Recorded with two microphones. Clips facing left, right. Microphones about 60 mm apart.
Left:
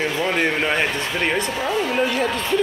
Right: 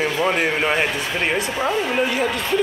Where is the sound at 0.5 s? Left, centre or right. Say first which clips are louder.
Right 1 dB; centre.